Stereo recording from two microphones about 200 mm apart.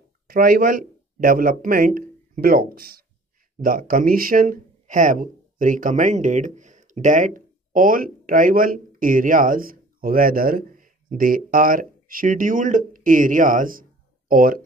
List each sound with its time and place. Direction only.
0.3 s speech: 45° right (ahead or behind)